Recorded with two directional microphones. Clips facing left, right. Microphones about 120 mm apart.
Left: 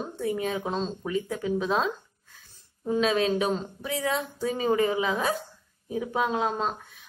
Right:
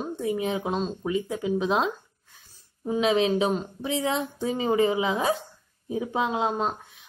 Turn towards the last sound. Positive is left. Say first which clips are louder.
# right 1 dB
turn(degrees=-15)  # may be behind; listen again after turning